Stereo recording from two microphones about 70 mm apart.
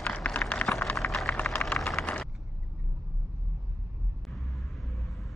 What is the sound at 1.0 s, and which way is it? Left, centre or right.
Vehicle, left.